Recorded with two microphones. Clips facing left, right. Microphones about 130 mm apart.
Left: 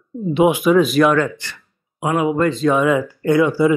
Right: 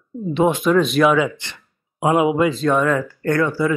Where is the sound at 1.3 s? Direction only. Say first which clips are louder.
Left 2 dB; 20° right (ahead or behind).